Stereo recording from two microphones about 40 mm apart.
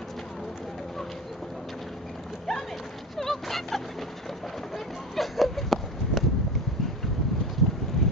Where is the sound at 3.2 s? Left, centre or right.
Centre.